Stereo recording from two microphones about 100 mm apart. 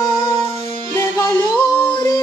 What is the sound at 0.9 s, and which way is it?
Music, 30° left (ahead or behind).